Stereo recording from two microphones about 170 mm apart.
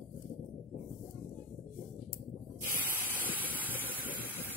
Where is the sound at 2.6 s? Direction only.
10° right (ahead or behind).